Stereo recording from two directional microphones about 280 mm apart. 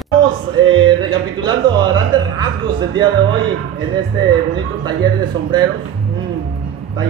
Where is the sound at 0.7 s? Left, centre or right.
Centre.